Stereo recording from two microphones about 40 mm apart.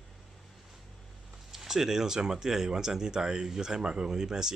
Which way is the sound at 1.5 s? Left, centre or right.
Centre.